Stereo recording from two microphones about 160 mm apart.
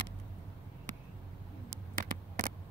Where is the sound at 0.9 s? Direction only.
50° right (ahead or behind).